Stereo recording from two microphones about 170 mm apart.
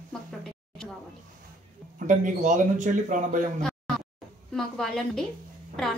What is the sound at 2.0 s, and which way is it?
A man's voice, 50° right (ahead or behind).